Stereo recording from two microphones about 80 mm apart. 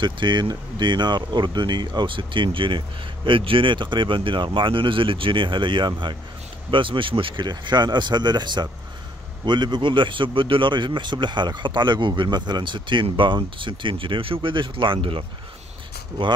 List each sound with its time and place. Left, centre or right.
0.0 s speech: right